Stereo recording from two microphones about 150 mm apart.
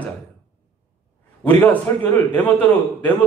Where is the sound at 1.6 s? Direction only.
10° left (ahead or behind).